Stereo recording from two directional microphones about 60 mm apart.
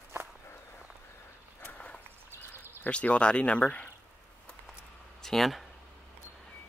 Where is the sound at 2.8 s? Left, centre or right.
Centre.